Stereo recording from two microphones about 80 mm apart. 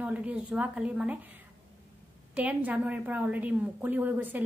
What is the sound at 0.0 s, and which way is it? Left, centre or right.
Speech, centre.